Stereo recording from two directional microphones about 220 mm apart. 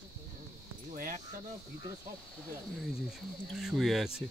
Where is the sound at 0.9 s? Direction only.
40° right (ahead or behind).